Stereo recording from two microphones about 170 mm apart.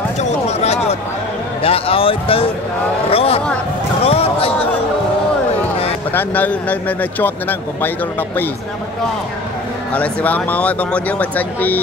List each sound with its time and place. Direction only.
0.2 s a sound: 40° left (ahead or behind)
1.6 s speech: 35° left (ahead or behind)
6.1 s speech: 10° left (ahead or behind)
9.9 s speech: 10° left (ahead or behind)